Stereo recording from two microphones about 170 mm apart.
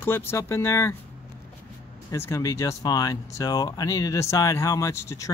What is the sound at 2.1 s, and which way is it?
Speech, 15° left (ahead or behind).